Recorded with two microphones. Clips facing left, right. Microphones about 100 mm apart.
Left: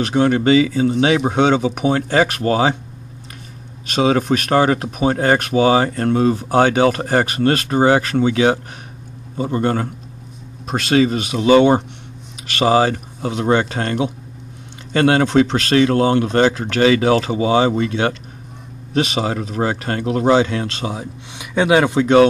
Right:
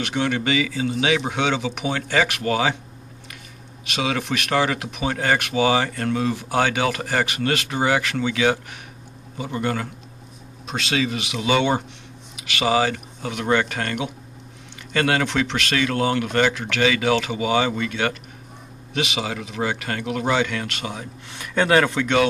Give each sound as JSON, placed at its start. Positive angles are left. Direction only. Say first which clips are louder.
{"t": 0.0, "sound": "speech", "louder": "left 8 dB", "side_deg": 35}
{"t": 3.8, "sound": "speech", "louder": "left 9 dB", "side_deg": 40}
{"t": 21.4, "sound": "speech", "louder": "left 3 dB", "side_deg": 10}
{"t": 22.0, "sound": "speech", "louder": "left 8 dB", "side_deg": 35}